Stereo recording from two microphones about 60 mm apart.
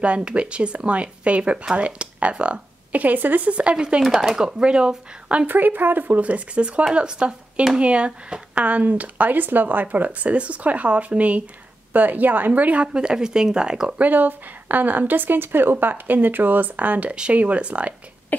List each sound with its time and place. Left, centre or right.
0.0 s speech: centre
4.0 s speech: centre
5.5 s speech: right; by 14.0 s centre
14.0 s speech: right
18.3 s cough: left